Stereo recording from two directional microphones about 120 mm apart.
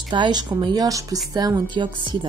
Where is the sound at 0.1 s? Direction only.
40° right (ahead or behind).